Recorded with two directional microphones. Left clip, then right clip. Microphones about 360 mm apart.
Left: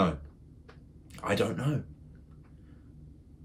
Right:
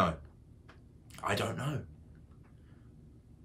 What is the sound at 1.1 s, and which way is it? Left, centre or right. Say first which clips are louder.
Speech: left 4 dB; centre.